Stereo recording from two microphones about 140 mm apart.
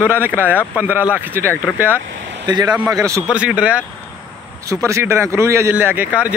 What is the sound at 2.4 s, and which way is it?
Speech, 30° right (ahead or behind).